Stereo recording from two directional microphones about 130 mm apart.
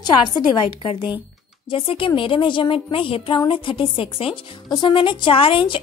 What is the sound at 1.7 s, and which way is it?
A woman's voice, 40° left (ahead or behind).